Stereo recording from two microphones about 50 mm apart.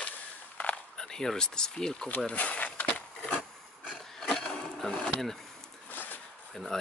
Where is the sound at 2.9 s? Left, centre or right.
Left.